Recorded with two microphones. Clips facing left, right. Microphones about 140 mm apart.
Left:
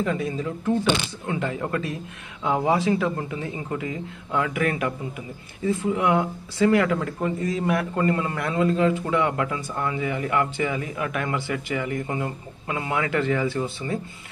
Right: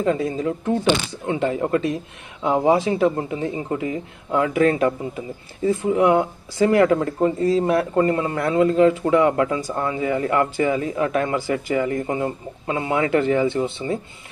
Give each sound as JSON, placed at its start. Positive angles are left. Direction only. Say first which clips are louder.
{"t": 0.0, "sound": "speech", "louder": "right 5 dB", "side_deg": -30}